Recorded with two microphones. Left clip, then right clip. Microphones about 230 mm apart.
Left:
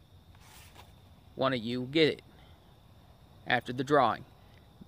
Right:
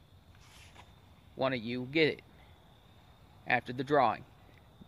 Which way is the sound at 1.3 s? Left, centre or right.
Centre.